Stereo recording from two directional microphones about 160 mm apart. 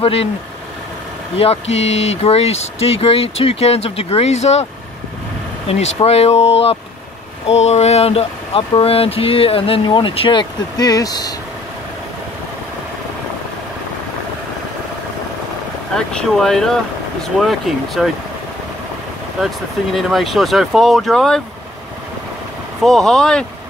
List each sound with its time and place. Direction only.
0.0 s speech: 40° left (ahead or behind)
1.3 s speech: 40° left (ahead or behind)
5.7 s speech: 40° left (ahead or behind); by 11.3 s 25° left (ahead or behind)
16.1 s speech: 5° left (ahead or behind)
19.4 s speech: centre (ahead or behind)
22.8 s speech: 5° left (ahead or behind)